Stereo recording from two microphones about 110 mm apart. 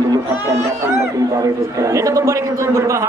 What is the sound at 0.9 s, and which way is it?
Speech, 30° right (ahead or behind).